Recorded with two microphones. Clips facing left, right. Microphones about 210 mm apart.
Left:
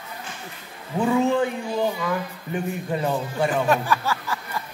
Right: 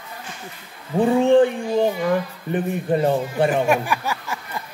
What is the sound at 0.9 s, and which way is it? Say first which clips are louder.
Speech: right 6 dB; 30° right (ahead or behind).